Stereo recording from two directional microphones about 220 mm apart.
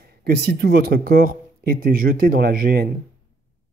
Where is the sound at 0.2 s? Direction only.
50° right (ahead or behind).